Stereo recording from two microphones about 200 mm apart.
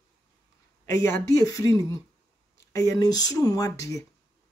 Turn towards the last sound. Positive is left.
turn(degrees=15)  # may be behind; listen again after turning